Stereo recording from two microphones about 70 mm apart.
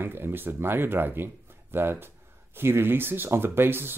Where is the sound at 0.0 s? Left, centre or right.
Right.